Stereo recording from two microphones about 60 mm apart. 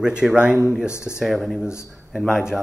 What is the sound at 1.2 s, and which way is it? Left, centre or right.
Speech, centre.